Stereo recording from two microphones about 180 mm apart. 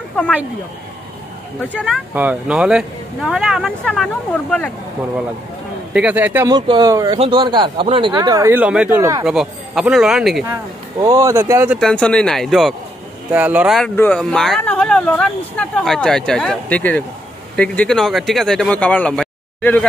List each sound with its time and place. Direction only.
1.6 s speech: 10° left (ahead or behind)
2.1 s speech: 5° right (ahead or behind)
5.9 s speech: 10° right (ahead or behind)
6.5 s speech: 20° right (ahead or behind)
8.2 s speech: 15° right (ahead or behind)
9.2 s speech: centre (ahead or behind)
10.5 s speech: 20° right (ahead or behind)
11.8 s speech: 5° left (ahead or behind)
13.7 s speech: 5° left (ahead or behind)